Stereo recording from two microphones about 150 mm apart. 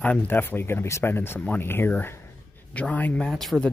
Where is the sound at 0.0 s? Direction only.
10° left (ahead or behind).